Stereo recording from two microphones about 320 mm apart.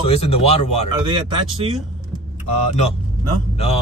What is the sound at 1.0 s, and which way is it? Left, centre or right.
Speech, centre.